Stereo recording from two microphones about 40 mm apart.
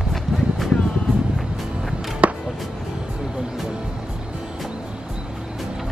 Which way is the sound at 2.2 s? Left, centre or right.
Right.